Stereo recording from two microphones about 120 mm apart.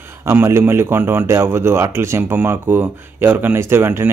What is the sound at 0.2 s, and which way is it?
A man's voice, 20° right (ahead or behind).